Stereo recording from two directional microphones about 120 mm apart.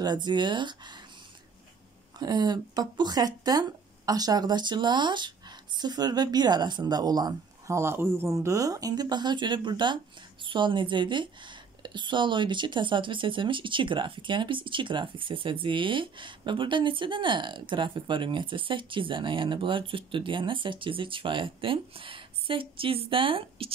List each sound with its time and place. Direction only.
0.0 s speech: 35° right (ahead or behind)
2.1 s a woman's voice: 35° right (ahead or behind)